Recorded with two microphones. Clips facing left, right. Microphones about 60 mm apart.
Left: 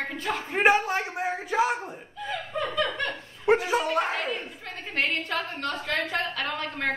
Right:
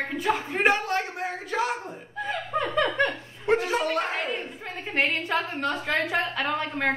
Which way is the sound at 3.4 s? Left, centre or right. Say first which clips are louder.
Left 1 dB; centre.